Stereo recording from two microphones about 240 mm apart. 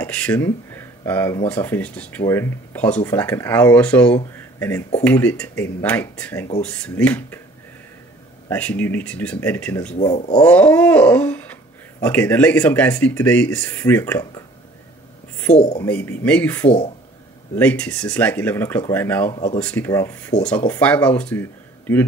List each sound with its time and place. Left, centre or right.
0.0 s speech: centre
8.5 s speech: centre
9.9 s speech: left
10.4 s speech: centre
15.4 s a woman's voice: centre
19.3 s speech: left
19.6 s speech: centre